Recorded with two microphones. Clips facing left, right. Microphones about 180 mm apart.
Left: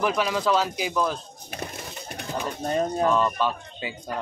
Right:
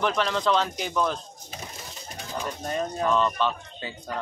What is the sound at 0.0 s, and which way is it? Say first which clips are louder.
Speech: left 1 dB; 10° left (ahead or behind).